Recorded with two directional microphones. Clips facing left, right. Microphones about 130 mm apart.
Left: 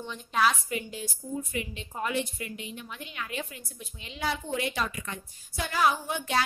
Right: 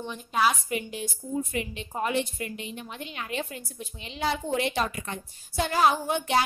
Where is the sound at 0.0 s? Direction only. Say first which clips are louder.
Right 1 dB; 10° right (ahead or behind).